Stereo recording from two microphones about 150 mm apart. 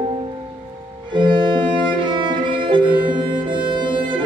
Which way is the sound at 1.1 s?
30° right (ahead or behind).